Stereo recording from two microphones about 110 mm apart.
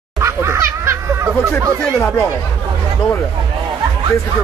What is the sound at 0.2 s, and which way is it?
Snicker, 25° right (ahead or behind).